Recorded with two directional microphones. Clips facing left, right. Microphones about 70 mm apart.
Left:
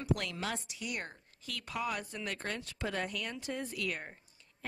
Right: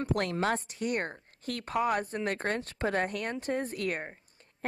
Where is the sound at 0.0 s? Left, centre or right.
Right.